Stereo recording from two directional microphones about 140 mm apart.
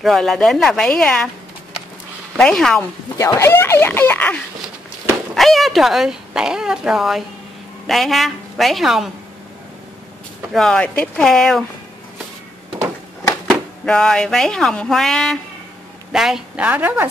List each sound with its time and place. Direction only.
0.0 s speech: centre (ahead or behind)
2.3 s speech: 5° left (ahead or behind)
3.2 s a sound: 20° left (ahead or behind)
5.3 s speech: centre (ahead or behind)
10.5 s speech: 5° left (ahead or behind)
13.5 s speech: 5° left (ahead or behind); by 17.1 s 10° right (ahead or behind)